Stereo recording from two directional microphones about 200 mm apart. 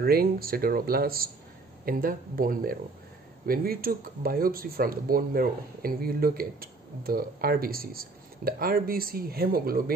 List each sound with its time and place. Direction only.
0.0 s speech: 50° right (ahead or behind)